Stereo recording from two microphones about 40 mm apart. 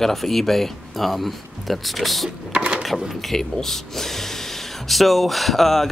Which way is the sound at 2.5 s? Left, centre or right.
Right.